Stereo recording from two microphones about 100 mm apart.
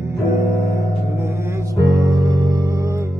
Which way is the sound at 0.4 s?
30° right (ahead or behind).